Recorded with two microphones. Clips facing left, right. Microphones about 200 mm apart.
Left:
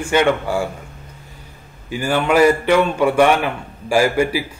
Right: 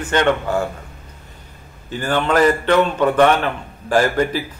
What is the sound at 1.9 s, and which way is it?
A man's voice, 10° left (ahead or behind).